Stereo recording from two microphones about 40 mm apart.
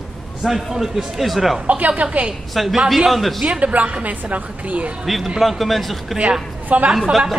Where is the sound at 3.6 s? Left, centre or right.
Right.